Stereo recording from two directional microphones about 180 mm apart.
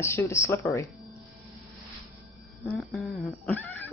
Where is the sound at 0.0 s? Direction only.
15° left (ahead or behind).